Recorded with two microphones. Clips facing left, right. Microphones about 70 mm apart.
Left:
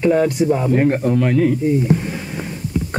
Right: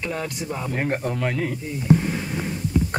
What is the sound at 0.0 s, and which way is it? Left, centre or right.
Speech, left.